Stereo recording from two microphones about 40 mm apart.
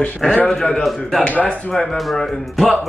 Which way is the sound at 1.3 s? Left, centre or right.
Left.